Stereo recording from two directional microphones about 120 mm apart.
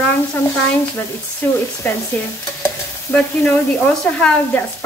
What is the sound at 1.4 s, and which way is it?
Stir, 15° left (ahead or behind).